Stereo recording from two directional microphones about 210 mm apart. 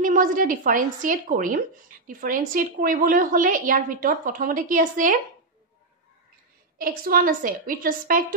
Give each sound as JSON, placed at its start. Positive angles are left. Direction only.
{"t": 0.0, "sound": "speech", "side_deg": -40}
{"t": 6.8, "sound": "speech", "side_deg": -45}